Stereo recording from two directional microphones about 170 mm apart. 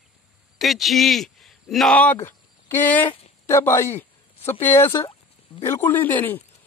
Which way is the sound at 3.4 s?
15° left (ahead or behind).